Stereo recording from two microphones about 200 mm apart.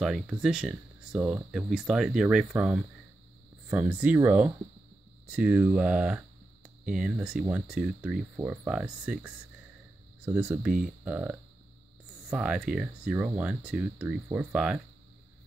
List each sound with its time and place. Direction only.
0.0 s speech: 5° right (ahead or behind)